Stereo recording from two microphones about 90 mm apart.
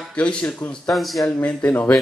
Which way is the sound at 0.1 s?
10° left (ahead or behind).